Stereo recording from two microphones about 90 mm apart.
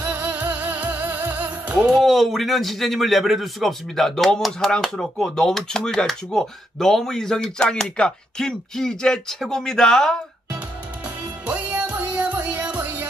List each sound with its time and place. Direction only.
0.0 s music: 20° right (ahead or behind)
2.0 s a man's voice: centre (ahead or behind)
11.4 s music: 15° right (ahead or behind)